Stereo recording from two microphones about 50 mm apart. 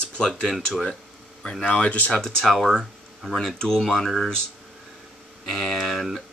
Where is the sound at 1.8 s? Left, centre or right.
Left.